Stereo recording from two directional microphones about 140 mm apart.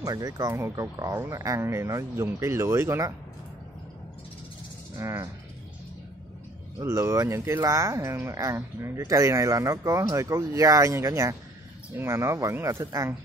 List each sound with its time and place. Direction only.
0.0 s speech: 25° right (ahead or behind)
4.9 s speech: 20° right (ahead or behind)
6.8 s speech: 20° right (ahead or behind)